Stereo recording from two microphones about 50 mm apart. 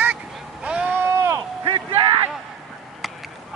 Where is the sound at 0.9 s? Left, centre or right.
Right.